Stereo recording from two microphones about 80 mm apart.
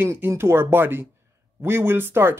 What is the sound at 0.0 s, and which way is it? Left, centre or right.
Speech, right.